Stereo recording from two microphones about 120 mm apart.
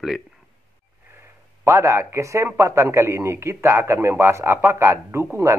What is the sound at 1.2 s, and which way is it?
A man's voice, 20° right (ahead or behind).